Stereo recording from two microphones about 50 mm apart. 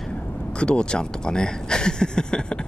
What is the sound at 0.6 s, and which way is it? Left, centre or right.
Speech, centre.